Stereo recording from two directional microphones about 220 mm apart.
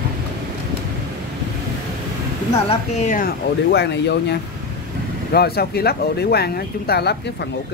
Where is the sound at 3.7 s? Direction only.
50° left (ahead or behind).